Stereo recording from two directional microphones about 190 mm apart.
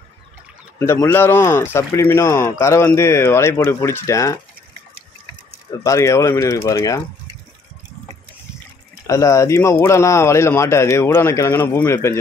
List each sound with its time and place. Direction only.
1.0 s speech: 10° left (ahead or behind)
5.9 s speech: 15° left (ahead or behind)
9.0 s speech: 15° left (ahead or behind)